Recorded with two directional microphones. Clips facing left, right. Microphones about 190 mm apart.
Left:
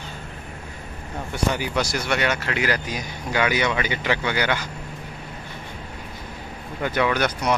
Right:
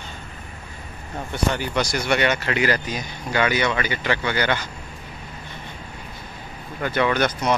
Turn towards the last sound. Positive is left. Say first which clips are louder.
# right 1 dB
turn(degrees=10)  # may be behind; listen again after turning